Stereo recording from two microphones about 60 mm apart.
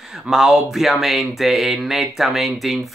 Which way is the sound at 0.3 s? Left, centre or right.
Centre.